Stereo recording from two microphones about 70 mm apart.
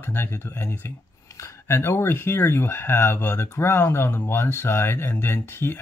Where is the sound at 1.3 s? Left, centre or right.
Left.